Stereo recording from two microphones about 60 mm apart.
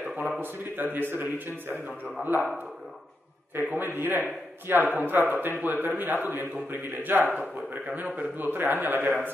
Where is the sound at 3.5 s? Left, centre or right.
Right.